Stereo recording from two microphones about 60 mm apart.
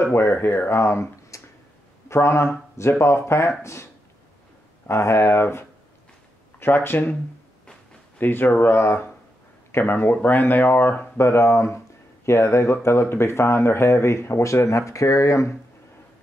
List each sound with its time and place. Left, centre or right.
0.0 s speech: left
0.7 s speech: left
1.3 s a sound: left
2.0 s speech: left
8.2 s speech: left
9.7 s a sound: left
10.2 s speech: left
11.1 s speech: left